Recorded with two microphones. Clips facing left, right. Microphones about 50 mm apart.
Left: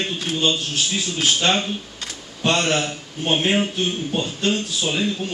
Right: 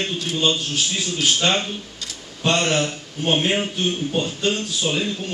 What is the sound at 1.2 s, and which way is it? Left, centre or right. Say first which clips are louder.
A man's voice: even; centre.